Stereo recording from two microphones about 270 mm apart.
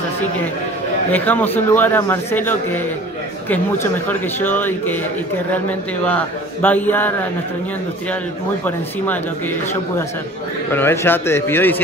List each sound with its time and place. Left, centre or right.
1.1 s a man's voice: centre
6.0 s a man's voice: centre
8.6 s a man's voice: centre
10.7 s a man's voice: centre